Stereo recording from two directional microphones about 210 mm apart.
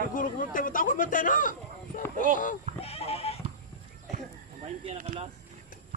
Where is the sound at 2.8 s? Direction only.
30° left (ahead or behind).